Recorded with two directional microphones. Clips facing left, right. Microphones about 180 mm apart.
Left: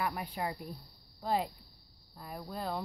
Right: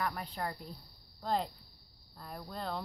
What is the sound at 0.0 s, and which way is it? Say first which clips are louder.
A woman's voice: left 2 dB; 10° left (ahead or behind).